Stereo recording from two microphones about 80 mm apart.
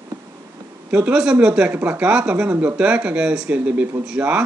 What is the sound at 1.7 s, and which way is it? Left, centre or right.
Speech, right.